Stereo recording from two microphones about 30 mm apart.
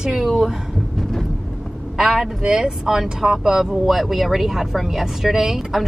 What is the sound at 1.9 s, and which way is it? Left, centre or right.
A man's voice, centre.